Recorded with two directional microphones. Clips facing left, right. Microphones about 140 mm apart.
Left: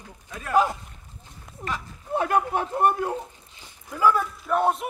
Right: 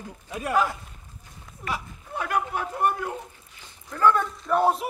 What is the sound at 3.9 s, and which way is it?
Speech, 5° left (ahead or behind).